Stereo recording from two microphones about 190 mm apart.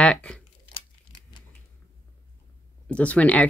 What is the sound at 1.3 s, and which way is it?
Camera, 20° left (ahead or behind).